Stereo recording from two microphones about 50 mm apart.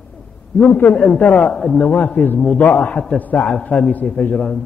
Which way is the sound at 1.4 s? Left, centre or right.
Centre.